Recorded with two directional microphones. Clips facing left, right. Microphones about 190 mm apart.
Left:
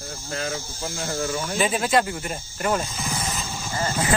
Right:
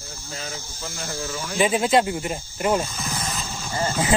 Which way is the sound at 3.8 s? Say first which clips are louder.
Right 2 dB; 20° right (ahead or behind).